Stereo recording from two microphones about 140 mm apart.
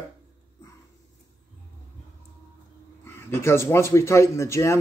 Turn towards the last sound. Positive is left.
turn(degrees=20)  # may be behind; listen again after turning